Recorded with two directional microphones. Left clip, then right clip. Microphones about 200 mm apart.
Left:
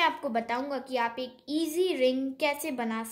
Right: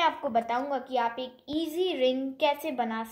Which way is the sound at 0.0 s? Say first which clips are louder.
Right 1 dB; 40° left (ahead or behind).